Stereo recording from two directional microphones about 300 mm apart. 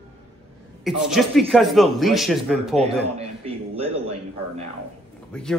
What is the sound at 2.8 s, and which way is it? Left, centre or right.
A man's voice, centre.